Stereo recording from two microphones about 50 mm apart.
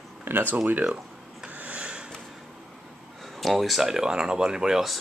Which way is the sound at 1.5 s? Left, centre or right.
Right.